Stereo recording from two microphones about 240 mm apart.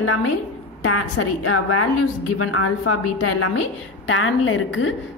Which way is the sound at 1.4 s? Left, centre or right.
Left.